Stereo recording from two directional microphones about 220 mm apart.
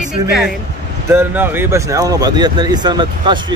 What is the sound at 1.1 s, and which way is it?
Speech, 10° right (ahead or behind).